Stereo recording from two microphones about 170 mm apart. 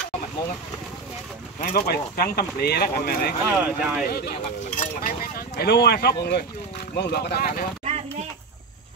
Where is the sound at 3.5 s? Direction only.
10° right (ahead or behind).